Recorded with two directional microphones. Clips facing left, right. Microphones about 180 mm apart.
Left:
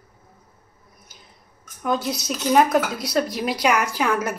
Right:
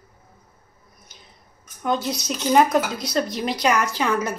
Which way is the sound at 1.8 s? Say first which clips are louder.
Even; 5° left (ahead or behind).